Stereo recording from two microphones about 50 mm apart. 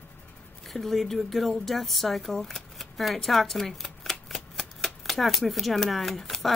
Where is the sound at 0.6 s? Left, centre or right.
Centre.